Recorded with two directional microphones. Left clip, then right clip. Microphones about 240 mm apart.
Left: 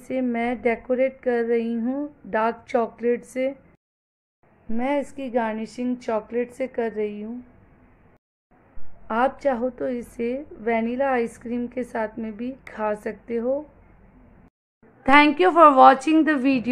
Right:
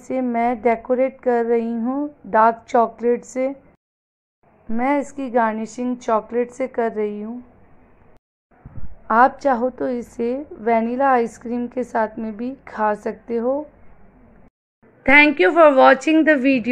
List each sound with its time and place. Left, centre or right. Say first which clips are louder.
0.1 s a woman's voice: right 5 dB; centre
4.6 s a woman's voice: right 4 dB; centre
9.0 s a woman's voice: right 7 dB; centre
15.0 s a woman's voice: right 3 dB; centre